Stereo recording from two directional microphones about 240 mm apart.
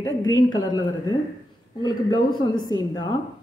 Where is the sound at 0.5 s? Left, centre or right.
Centre.